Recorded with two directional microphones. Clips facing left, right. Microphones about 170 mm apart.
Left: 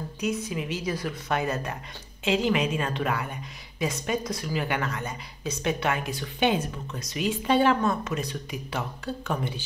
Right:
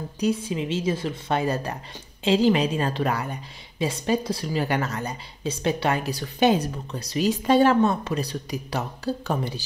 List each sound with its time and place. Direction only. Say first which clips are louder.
0.2 s a woman's voice: right 5 dB; 30° right (ahead or behind)